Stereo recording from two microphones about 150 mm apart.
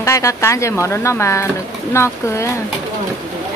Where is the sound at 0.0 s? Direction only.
20° left (ahead or behind).